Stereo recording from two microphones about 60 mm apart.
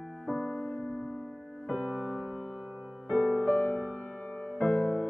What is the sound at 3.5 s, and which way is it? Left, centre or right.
Music, left.